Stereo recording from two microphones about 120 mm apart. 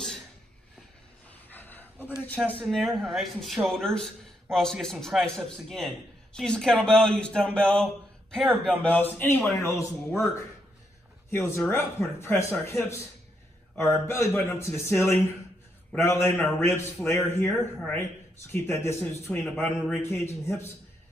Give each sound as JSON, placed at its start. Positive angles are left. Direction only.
{"t": 1.5, "sound": "a sound", "side_deg": 15}
{"t": 2.6, "sound": "a man's voice", "side_deg": 0}
{"t": 8.8, "sound": "a man's voice", "side_deg": 15}